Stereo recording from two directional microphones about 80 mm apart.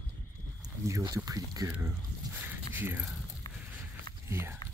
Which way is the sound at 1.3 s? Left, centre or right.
Right.